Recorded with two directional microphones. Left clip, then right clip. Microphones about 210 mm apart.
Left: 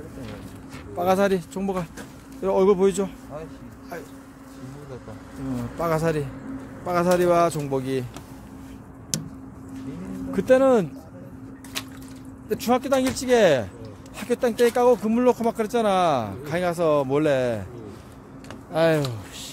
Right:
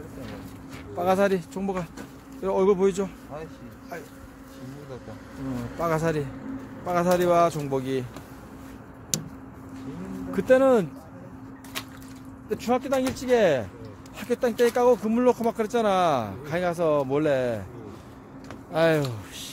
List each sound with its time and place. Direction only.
0.9 s speech: 5° left (ahead or behind)
5.8 s speech: 5° left (ahead or behind)
10.3 s speech: 10° left (ahead or behind)
12.4 s speech: 25° left (ahead or behind)
18.7 s speech: centre (ahead or behind)